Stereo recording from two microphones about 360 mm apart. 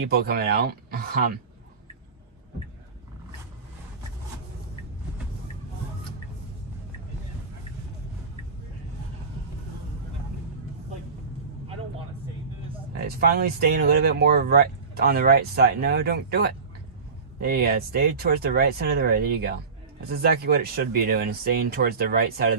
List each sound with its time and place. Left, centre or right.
0.1 s speech: right
12.9 s speech: right